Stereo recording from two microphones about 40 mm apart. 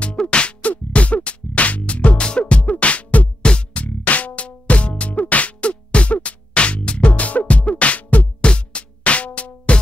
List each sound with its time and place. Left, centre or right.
0.0 s music: left
3.8 s music: left